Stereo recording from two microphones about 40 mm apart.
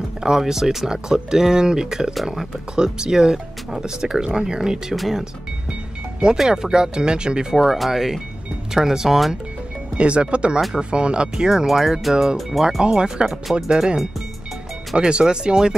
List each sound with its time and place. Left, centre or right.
0.2 s speech: centre
4.9 s speech: centre
6.5 s speech: centre
7.5 s speech: centre
9.9 s speech: right; by 12.6 s centre
12.6 s speech: right
15.0 s speech: right